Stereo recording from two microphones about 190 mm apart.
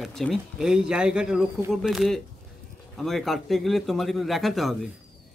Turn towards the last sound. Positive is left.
turn(degrees=0)  # may be behind; listen again after turning